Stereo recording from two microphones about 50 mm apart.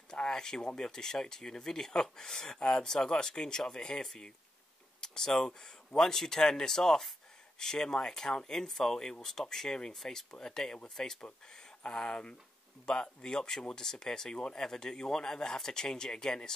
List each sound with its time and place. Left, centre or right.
0.3 s speech: centre